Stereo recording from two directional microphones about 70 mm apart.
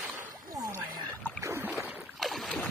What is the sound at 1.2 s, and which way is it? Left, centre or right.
Boat, left.